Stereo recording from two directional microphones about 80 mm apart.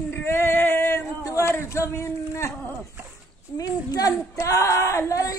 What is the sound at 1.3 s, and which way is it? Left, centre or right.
A man's voice, left.